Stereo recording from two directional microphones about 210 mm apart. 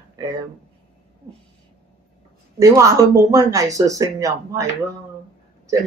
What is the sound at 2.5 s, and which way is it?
Speech, 15° right (ahead or behind).